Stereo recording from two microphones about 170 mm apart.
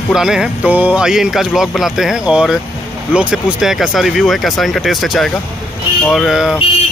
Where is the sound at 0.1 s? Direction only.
5° right (ahead or behind).